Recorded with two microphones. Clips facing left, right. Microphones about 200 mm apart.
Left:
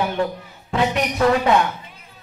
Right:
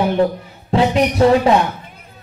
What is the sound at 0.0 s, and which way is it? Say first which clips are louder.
A man's voice: right 6 dB; 35° right (ahead or behind).